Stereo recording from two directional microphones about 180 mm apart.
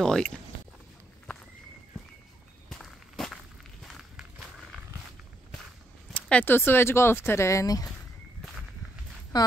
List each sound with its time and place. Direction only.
0.0 s speech: 5° left (ahead or behind)
2.7 s walk: centre (ahead or behind)
3.8 s run: centre (ahead or behind)
6.1 s speech: 5° left (ahead or behind)
9.3 s a woman's voice: 20° left (ahead or behind)